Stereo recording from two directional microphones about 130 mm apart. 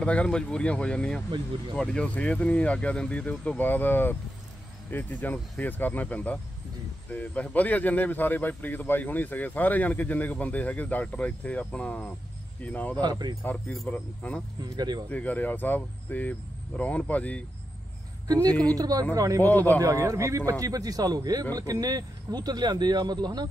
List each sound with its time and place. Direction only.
0.0 s speech: 10° left (ahead or behind)
13.0 s speech: 30° right (ahead or behind)
13.4 s speech: 15° left (ahead or behind)
14.6 s speech: 30° right (ahead or behind)
15.0 s speech: 10° left (ahead or behind)
18.2 s speech: 30° right (ahead or behind)